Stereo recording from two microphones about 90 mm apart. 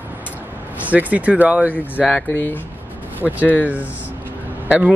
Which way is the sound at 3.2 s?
20° right (ahead or behind).